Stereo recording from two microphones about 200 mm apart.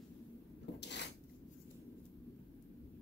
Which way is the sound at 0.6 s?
60° left (ahead or behind).